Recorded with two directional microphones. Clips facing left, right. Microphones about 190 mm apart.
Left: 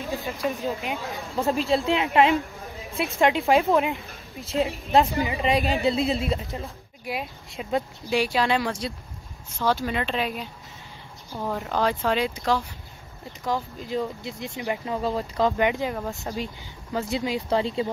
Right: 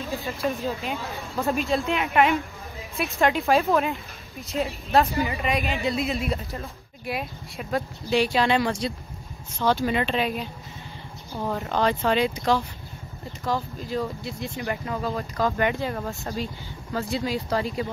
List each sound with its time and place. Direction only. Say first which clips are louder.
0.3 s speech: right 1 dB; 15° left (ahead or behind)
1.9 s speech: left 1 dB; 30° left (ahead or behind)
5.4 s a woman's voice: left 3 dB; 30° left (ahead or behind)
6.3 s speech: left 1 dB; 20° left (ahead or behind)
8.2 s speech: right 2 dB; 5° left (ahead or behind)
13.4 s speech: even; 15° left (ahead or behind)